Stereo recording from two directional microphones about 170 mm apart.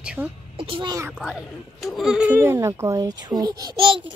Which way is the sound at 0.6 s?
30° right (ahead or behind).